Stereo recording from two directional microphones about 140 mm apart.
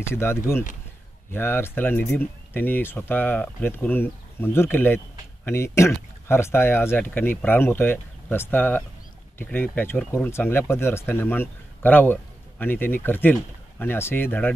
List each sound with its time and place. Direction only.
0.0 s speech: 15° left (ahead or behind)